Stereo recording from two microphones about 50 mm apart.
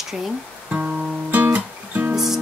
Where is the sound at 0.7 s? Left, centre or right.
Right.